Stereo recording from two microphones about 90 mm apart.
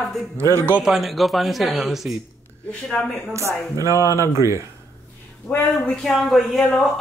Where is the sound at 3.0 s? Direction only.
10° left (ahead or behind).